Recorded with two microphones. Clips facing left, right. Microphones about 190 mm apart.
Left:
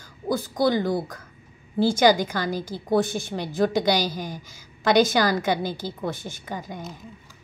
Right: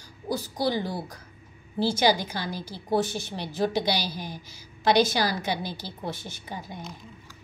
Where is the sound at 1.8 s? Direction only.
50° left (ahead or behind).